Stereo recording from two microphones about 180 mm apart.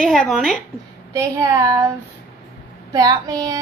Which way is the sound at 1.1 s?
15° right (ahead or behind).